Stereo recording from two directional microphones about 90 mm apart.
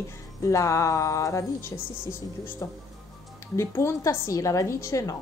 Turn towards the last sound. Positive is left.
turn(degrees=35)  # may be behind; listen again after turning